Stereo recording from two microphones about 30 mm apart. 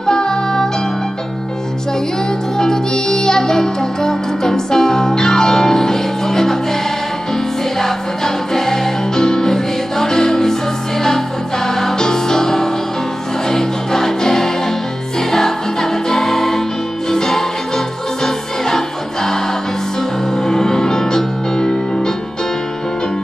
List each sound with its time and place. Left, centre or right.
0.0 s music: left
2.5 s music: centre